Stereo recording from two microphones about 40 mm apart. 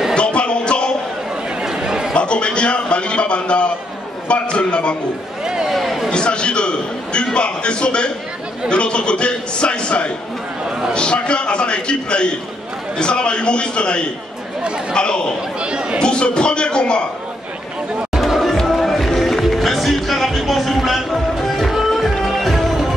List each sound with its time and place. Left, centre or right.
0.1 s music: left
1.6 s chatter: centre
2.1 s a man's voice: left
5.4 s a sound: centre
5.7 s a sound: centre
6.0 s a man's voice: left
15.6 s speech: right
16.0 s a man's voice: left
18.2 s music: centre